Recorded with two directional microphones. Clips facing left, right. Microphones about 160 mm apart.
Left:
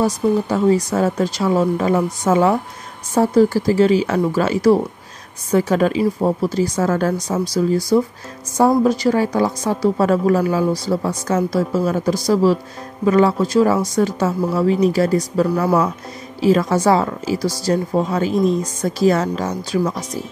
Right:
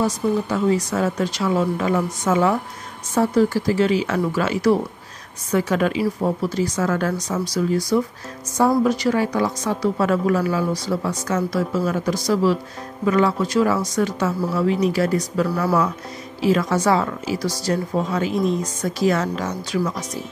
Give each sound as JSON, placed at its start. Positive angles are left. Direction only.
{"t": 0.0, "sound": "speech", "side_deg": 35}